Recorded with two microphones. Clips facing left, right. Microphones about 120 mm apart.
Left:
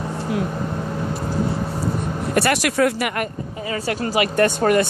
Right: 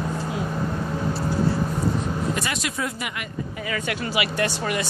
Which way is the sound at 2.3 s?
70° left (ahead or behind).